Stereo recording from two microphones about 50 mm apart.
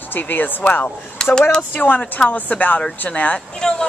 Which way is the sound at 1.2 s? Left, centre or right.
Centre.